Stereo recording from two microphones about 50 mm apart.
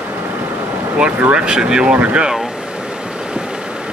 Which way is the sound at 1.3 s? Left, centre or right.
Centre.